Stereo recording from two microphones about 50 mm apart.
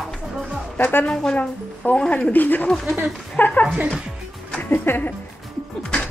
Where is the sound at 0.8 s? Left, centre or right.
Left.